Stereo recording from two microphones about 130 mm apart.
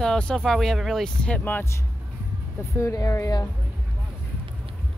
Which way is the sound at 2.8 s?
25° left (ahead or behind).